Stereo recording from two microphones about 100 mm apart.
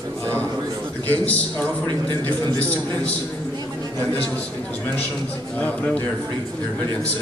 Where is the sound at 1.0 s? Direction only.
15° left (ahead or behind).